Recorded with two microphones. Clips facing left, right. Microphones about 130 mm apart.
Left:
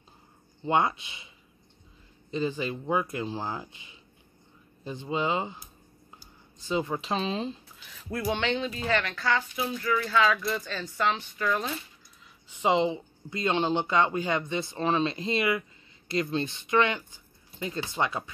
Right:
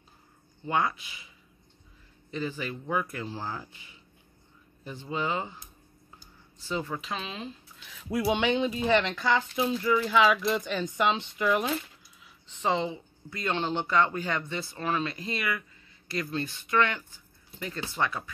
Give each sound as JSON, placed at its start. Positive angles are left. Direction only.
{"t": 0.7, "sound": "speech", "side_deg": 25}
{"t": 2.3, "sound": "speech", "side_deg": 20}
{"t": 6.6, "sound": "a woman's voice", "side_deg": 20}
{"t": 7.0, "sound": "speech", "side_deg": 30}
{"t": 8.1, "sound": "speech", "side_deg": -10}
{"t": 12.4, "sound": "speech", "side_deg": 15}